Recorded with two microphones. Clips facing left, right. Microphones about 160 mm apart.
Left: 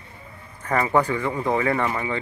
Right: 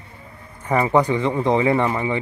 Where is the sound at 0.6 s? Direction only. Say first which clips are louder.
Right 3 dB; 15° right (ahead or behind).